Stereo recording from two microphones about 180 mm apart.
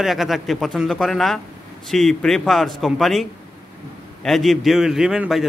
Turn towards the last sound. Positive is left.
turn(degrees=-5)  # may be behind; listen again after turning